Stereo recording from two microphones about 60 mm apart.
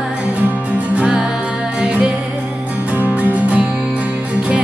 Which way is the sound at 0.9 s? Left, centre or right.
Centre.